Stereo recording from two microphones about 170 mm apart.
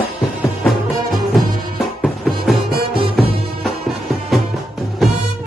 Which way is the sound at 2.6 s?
65° right (ahead or behind).